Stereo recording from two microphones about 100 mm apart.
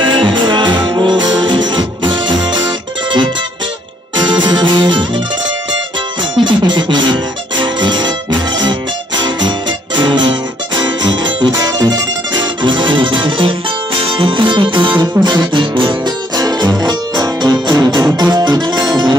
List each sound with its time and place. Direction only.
0.0 s music: 55° right (ahead or behind)
6.4 s music: 50° right (ahead or behind)
16.3 s music: 45° right (ahead or behind)